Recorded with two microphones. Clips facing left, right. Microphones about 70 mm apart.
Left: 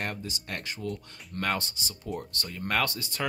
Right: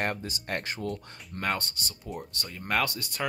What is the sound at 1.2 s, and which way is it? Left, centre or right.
Speech, centre.